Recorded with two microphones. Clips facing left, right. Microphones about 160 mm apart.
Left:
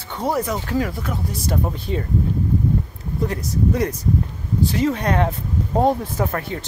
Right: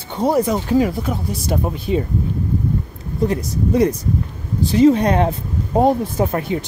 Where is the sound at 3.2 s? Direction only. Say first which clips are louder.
Right 3 dB; 20° right (ahead or behind).